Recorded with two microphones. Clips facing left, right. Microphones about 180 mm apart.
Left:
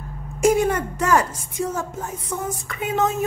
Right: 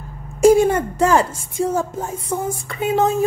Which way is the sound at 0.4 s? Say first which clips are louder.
Right 6 dB; 30° right (ahead or behind).